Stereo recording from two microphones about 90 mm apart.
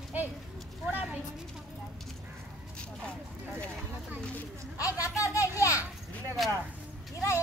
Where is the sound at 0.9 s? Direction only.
15° right (ahead or behind).